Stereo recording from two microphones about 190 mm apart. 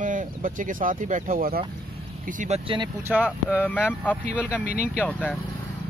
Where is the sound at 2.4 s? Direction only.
30° right (ahead or behind).